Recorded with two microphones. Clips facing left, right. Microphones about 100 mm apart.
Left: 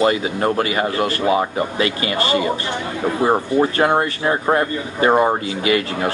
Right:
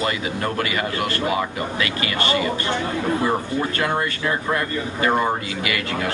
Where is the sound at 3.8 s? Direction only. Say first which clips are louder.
Left 6 dB; 30° left (ahead or behind).